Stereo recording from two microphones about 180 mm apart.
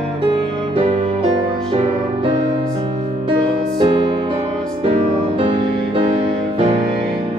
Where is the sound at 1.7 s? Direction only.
30° right (ahead or behind).